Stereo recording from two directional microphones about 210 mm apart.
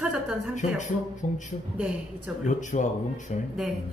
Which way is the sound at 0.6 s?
35° left (ahead or behind).